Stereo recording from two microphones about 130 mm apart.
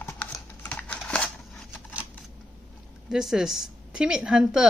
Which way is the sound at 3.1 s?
5° right (ahead or behind).